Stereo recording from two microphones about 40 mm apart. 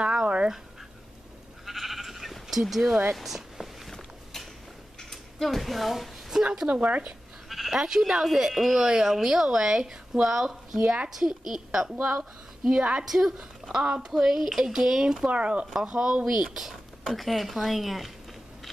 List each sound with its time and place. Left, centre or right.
0.0 s dog: right
1.7 s goat: centre
2.4 s speech: centre
3.2 s a sound: centre
5.1 s speech: centre
6.4 s speech: centre
6.7 s speech: right
7.4 s bleat: centre
8.0 s a woman's voice: centre
11.1 s speech: centre
11.9 s speech: right
13.1 s speech: centre
15.2 s speech: right
16.4 s speech: centre